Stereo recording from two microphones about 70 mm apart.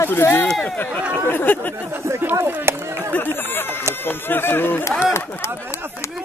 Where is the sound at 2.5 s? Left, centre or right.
Right.